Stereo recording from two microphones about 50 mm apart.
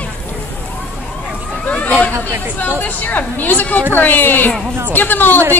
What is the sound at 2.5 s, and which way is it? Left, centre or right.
Speech, left.